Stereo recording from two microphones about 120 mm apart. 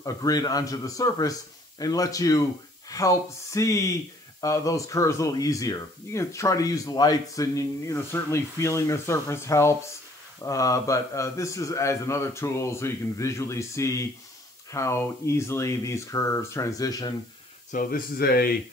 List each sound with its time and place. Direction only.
0.0 s speech: 30° left (ahead or behind)
17.7 s speech: 90° left